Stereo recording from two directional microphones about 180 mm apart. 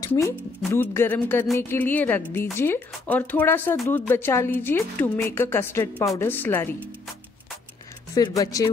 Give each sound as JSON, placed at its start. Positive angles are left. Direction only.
{"t": 0.0, "sound": "a woman's voice", "side_deg": 15}
{"t": 8.1, "sound": "speech", "side_deg": 20}